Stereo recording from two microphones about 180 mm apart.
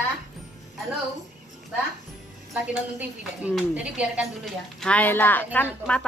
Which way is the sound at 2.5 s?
5° right (ahead or behind).